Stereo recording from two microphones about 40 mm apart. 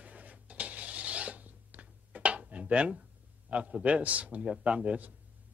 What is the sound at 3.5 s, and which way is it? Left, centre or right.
Speech, right.